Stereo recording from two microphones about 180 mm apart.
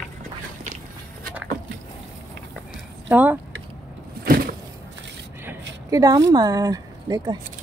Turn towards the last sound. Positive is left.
turn(degrees=-20)  # may be behind; listen again after turning